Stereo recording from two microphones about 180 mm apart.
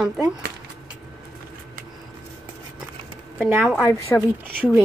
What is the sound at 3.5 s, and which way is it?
Speech, 10° right (ahead or behind).